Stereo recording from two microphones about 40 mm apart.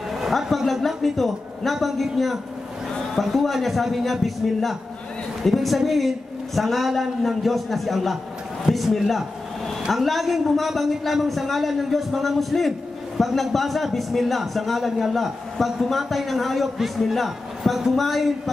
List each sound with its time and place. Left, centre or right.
0.1 s a sound: centre
0.5 s a man's voice: centre
15.5 s a man's voice: centre